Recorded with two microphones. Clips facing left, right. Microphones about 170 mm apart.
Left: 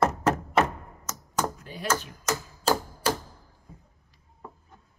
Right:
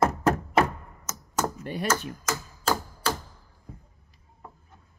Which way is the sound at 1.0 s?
5° right (ahead or behind).